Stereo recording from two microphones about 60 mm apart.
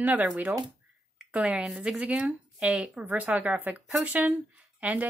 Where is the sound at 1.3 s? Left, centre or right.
Centre.